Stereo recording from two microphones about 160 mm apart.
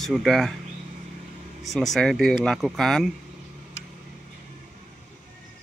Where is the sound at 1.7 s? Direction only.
Centre (ahead or behind).